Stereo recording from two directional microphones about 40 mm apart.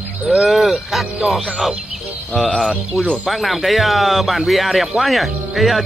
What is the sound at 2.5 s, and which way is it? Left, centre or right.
Speech, left.